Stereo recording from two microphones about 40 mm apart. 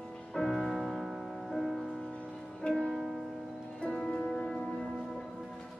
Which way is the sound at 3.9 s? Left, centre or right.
Centre.